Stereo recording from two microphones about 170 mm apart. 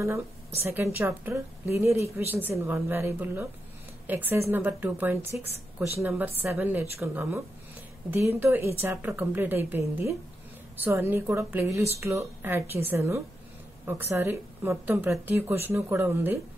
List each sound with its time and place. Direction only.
0.7 s a woman's voice: 15° right (ahead or behind)